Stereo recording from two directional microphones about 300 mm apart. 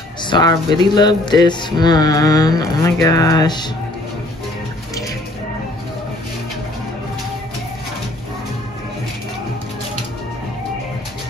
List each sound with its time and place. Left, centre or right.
0.2 s speech: centre